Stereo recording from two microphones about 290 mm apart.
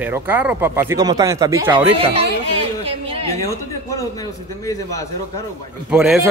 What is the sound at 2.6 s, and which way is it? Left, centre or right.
Speech, centre.